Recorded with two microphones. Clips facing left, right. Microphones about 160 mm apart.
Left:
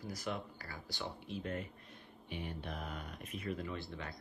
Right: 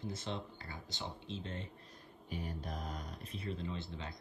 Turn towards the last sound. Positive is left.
turn(degrees=-20)  # may be behind; listen again after turning